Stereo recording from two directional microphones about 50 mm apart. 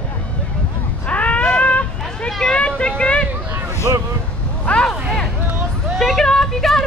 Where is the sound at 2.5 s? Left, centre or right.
Left.